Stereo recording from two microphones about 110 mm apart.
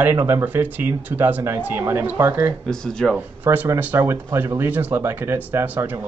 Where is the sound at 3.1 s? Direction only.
15° right (ahead or behind).